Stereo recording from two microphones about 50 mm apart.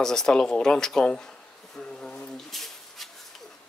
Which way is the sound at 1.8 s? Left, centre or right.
Centre.